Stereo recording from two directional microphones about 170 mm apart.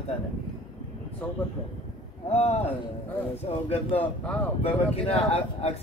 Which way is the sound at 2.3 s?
40° left (ahead or behind).